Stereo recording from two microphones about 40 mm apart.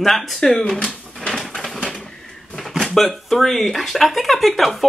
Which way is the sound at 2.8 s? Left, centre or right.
Centre.